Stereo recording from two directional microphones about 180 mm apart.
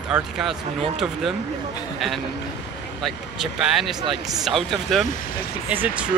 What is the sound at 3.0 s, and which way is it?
Speech, centre (ahead or behind).